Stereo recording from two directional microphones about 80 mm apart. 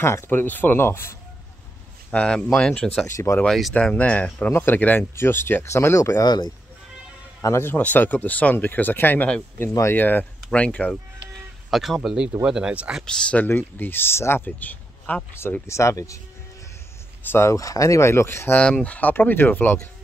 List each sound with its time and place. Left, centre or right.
0.0 s speech: left
2.0 s speech: centre
3.1 s speech: left
3.4 s speech: centre
3.7 s speech: centre; by 6.2 s left
6.2 s speech: left
7.6 s speech: centre
11.7 s speech: centre
13.0 s speech: centre
13.5 s speech: left
15.6 s speech: left
17.2 s speech: left
17.5 s speech: left
18.6 s speech: centre